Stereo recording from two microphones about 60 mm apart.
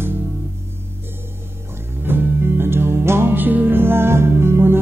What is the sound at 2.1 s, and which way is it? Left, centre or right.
Music, right.